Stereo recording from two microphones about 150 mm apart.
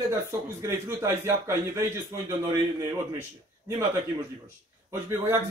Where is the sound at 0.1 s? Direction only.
20° right (ahead or behind).